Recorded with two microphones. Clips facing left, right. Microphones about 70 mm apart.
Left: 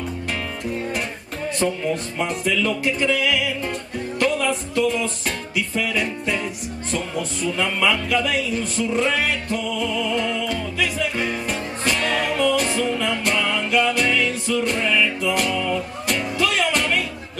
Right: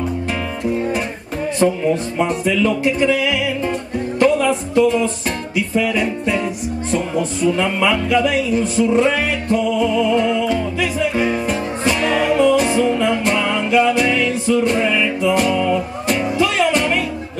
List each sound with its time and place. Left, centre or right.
0.7 s music: centre
1.6 s music: centre
2.1 s music: centre